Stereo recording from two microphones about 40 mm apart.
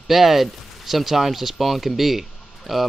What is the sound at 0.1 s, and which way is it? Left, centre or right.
Speech, centre.